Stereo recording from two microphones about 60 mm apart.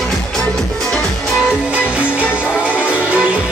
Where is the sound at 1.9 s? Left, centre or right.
Right.